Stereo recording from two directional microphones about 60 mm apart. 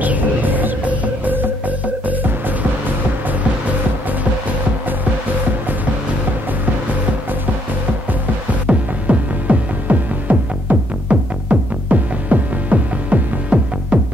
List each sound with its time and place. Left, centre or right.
0.0 s music: right
8.6 s music: right